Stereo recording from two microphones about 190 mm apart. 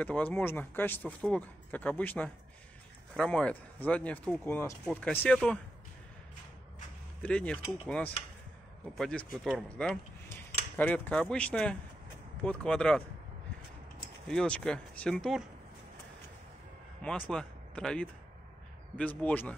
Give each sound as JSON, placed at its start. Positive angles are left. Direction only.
{"t": 0.0, "sound": "speech", "side_deg": 10}
{"t": 7.2, "sound": "speech", "side_deg": 5}
{"t": 14.2, "sound": "speech", "side_deg": 5}
{"t": 17.3, "sound": "speech", "side_deg": 5}